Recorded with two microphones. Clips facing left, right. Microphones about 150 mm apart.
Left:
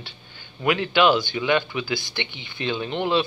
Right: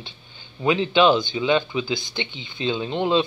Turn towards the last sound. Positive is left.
turn(degrees=-20)  # may be behind; listen again after turning